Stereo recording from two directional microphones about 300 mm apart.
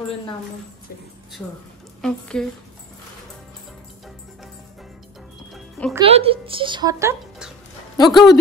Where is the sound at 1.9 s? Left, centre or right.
Centre.